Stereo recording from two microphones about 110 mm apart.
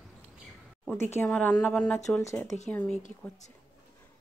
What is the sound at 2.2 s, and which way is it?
Speech, 25° left (ahead or behind).